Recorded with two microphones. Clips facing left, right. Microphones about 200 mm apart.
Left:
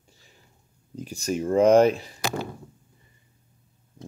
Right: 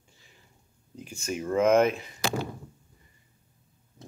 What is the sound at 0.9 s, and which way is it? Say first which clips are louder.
Speech: left 6 dB; 35° left (ahead or behind).